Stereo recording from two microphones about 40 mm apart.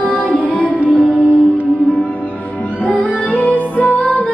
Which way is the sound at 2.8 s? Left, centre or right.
Left.